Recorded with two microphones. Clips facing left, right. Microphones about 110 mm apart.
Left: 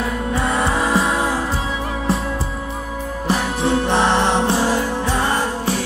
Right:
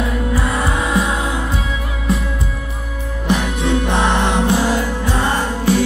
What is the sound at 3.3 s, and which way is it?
Music, 35° left (ahead or behind).